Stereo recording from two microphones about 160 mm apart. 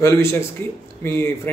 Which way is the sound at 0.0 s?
15° left (ahead or behind).